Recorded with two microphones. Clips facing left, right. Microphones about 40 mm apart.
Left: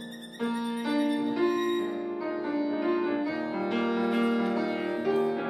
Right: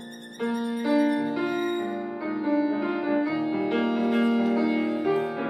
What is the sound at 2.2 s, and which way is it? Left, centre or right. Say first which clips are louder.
Music: right 7 dB; centre.